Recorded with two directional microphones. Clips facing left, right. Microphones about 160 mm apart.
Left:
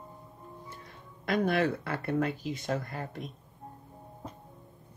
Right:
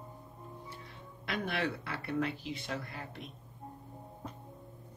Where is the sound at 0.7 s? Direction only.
45° left (ahead or behind).